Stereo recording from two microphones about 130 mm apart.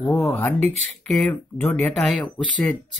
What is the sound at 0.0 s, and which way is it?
Speech, 20° left (ahead or behind).